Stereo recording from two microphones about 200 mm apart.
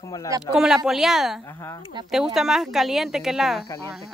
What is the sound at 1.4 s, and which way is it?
Speech, 15° left (ahead or behind).